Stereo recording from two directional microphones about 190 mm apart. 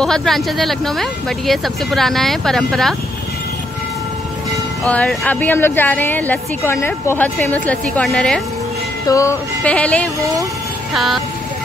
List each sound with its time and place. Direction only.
0.0 s speech: centre (ahead or behind)
4.8 s speech: 5° left (ahead or behind)
9.0 s speech: 15° left (ahead or behind); by 11.2 s centre (ahead or behind)